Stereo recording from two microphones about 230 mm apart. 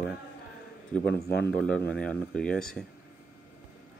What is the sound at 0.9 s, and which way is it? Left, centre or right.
Speech, centre.